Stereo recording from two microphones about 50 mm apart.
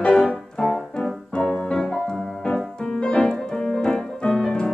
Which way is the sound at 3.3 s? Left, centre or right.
Centre.